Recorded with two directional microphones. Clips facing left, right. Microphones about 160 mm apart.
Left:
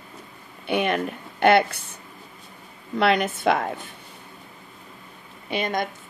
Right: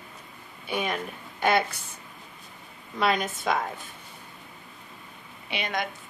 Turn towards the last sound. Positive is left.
turn(degrees=50)  # may be behind; listen again after turning